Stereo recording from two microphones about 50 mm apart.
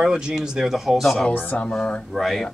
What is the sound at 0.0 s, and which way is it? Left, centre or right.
Speech, centre.